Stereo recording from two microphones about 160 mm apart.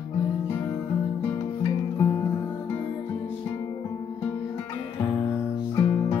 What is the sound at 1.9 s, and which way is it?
Music, 25° left (ahead or behind).